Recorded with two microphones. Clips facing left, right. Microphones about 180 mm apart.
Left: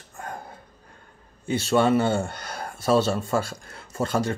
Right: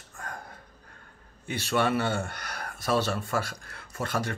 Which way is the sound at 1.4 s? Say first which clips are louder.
Left 6 dB; 25° left (ahead or behind).